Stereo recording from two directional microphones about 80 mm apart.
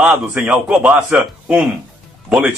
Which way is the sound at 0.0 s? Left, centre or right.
Centre.